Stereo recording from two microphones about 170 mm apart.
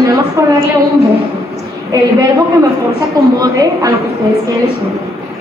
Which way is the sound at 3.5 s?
20° right (ahead or behind).